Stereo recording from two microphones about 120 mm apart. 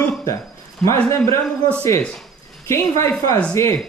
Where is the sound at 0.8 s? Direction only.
5° left (ahead or behind).